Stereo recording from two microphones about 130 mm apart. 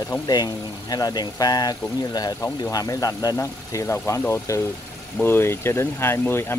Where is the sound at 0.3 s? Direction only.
30° left (ahead or behind).